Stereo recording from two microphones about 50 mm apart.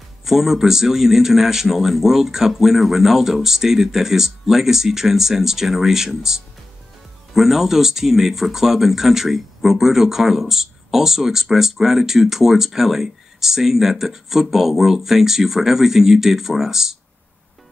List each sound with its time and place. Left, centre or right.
0.2 s speech: centre